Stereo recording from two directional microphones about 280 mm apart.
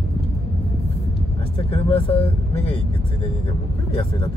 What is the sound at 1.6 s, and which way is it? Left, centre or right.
Speech, left.